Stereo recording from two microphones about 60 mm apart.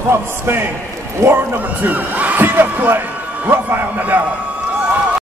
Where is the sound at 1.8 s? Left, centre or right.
Right.